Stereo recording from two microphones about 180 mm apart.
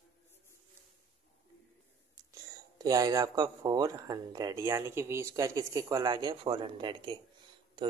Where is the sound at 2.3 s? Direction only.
20° right (ahead or behind).